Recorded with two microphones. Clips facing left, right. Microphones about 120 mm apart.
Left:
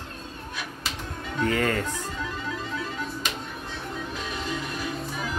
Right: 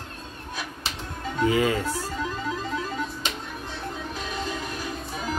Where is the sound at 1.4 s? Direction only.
5° right (ahead or behind).